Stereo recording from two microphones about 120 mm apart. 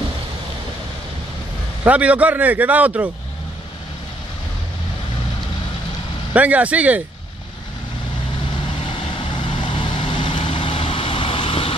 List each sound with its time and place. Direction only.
1.9 s a man's voice: 10° right (ahead or behind)
6.3 s a man's voice: 10° right (ahead or behind)
9.5 s vehicle: 40° left (ahead or behind)